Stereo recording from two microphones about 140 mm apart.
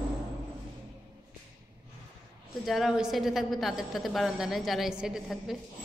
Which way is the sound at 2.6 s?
Centre (ahead or behind).